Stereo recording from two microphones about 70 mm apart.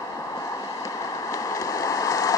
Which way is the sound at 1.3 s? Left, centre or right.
Left.